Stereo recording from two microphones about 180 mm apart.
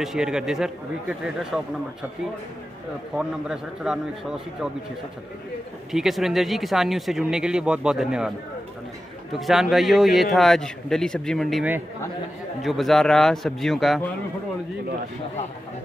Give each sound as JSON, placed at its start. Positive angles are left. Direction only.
{"t": 0.0, "sound": "speech", "side_deg": -5}
{"t": 3.2, "sound": "speech", "side_deg": -5}
{"t": 5.9, "sound": "speech", "side_deg": 0}
{"t": 9.4, "sound": "speech", "side_deg": 0}